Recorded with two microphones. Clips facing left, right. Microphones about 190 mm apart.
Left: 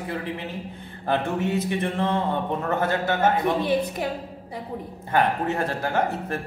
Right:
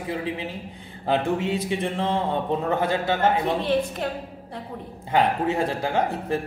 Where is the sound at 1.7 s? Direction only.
15° right (ahead or behind).